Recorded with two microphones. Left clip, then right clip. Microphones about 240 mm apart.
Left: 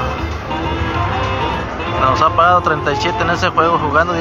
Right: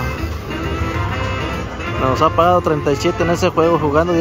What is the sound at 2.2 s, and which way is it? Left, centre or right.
Speech, right.